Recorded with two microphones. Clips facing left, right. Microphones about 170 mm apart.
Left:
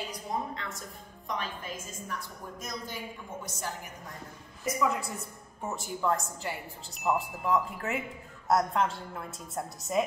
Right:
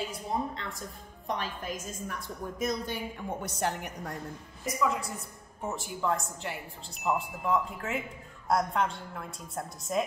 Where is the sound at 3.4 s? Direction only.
70° right (ahead or behind).